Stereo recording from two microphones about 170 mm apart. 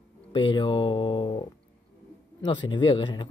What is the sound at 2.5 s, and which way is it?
Speech, 25° left (ahead or behind).